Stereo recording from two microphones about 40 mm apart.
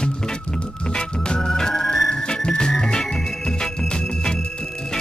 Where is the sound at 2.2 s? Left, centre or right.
Left.